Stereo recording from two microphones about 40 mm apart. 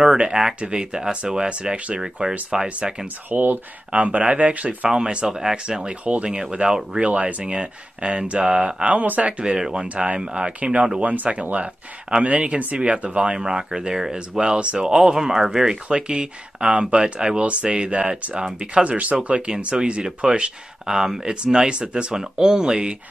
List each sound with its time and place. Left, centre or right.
0.0 s speech: right
2.5 s speech: centre
3.3 s speech: right
3.9 s speech: right
4.8 s speech: centre
7.1 s speech: right
9.0 s speech: right
9.4 s speech: right
12.3 s speech: right
12.7 s speech: right
13.4 s speech: centre
14.9 s speech: centre
19.7 s speech: centre